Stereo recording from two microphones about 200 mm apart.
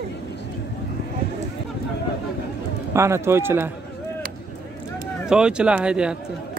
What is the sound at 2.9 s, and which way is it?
Speech, 15° right (ahead or behind).